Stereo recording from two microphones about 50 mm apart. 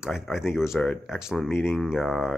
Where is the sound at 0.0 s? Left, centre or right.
Centre.